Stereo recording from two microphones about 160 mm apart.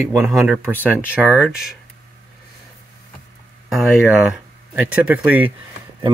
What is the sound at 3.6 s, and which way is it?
Speech, 5° right (ahead or behind).